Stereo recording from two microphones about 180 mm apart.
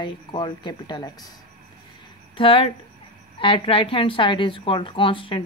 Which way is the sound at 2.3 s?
30° left (ahead or behind).